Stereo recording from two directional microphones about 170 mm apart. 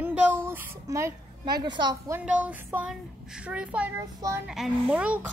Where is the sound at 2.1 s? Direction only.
5° right (ahead or behind).